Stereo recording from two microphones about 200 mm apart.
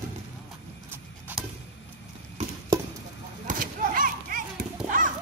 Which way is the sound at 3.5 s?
40° right (ahead or behind).